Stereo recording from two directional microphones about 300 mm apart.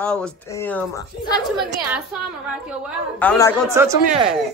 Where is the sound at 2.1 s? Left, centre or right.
Centre.